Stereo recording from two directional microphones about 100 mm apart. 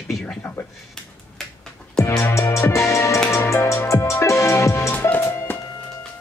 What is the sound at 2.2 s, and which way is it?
Music, 30° left (ahead or behind).